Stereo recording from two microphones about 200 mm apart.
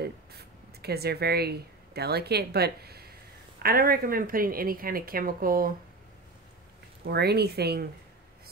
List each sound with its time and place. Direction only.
0.0 s a woman's voice: 55° right (ahead or behind)
7.1 s a woman's voice: 55° right (ahead or behind)